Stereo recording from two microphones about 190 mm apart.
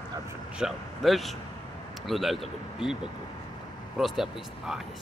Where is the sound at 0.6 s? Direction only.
Centre (ahead or behind).